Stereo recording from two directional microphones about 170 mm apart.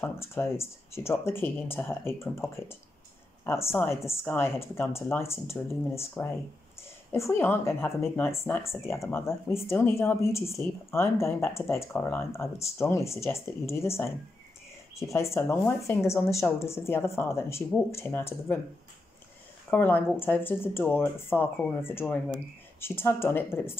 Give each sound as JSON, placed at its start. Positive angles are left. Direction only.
{"t": 0.0, "sound": "speech", "side_deg": 15}
{"t": 15.1, "sound": "speech", "side_deg": 15}
{"t": 19.7, "sound": "speech", "side_deg": 10}